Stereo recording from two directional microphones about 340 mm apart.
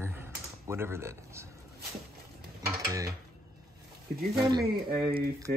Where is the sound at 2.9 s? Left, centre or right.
Centre.